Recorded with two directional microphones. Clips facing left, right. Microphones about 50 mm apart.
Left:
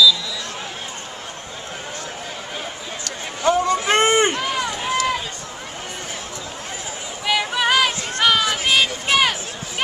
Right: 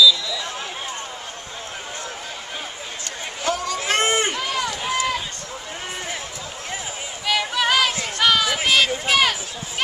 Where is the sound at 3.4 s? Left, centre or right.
Left.